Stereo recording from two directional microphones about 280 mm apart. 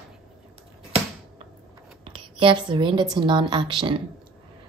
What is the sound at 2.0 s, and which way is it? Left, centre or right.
A woman's voice, centre.